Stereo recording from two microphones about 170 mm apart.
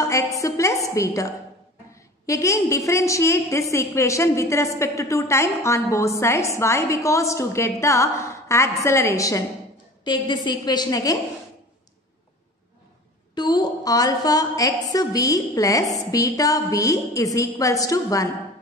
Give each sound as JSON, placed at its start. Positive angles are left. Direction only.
{"t": 0.0, "sound": "a sound", "side_deg": 20}
{"t": 0.9, "sound": "a woman's voice", "side_deg": 20}
{"t": 13.3, "sound": "a woman's voice", "side_deg": 25}